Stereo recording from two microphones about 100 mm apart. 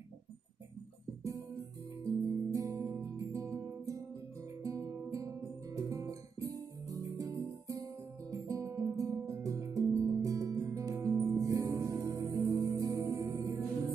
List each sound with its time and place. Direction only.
1.2 s guitar: 30° right (ahead or behind)
2.0 s music: 35° right (ahead or behind)